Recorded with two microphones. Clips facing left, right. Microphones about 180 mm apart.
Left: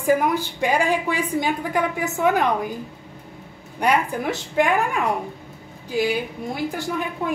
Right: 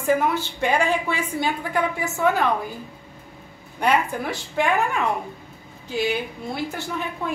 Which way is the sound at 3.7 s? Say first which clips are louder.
Left 1 dB; 15° left (ahead or behind).